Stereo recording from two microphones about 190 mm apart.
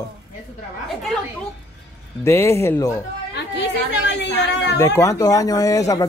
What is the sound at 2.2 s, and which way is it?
Speech, 15° left (ahead or behind).